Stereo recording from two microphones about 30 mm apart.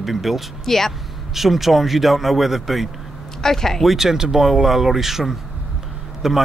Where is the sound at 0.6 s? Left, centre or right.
Centre.